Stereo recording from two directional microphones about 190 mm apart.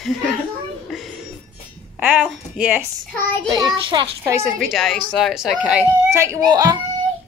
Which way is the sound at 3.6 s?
25° right (ahead or behind).